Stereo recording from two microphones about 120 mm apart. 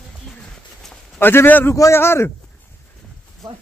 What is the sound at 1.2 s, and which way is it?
A man's voice, 20° left (ahead or behind).